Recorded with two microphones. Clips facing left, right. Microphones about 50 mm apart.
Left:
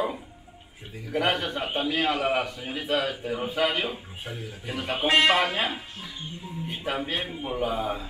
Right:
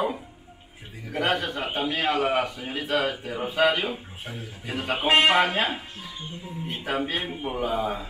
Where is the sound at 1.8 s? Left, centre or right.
Right.